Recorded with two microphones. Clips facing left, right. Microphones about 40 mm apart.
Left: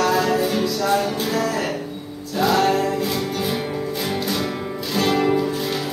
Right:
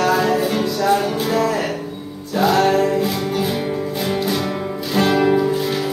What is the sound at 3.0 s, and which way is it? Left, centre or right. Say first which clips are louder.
Music: right 3 dB; centre.